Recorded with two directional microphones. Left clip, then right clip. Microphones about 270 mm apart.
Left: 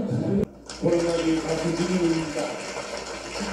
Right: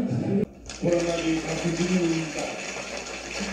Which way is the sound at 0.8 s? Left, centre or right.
Right.